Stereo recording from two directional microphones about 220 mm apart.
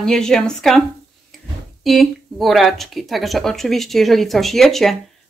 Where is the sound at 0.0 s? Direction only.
Centre (ahead or behind).